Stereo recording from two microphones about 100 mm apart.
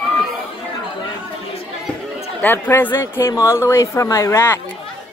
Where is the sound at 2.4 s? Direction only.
20° left (ahead or behind).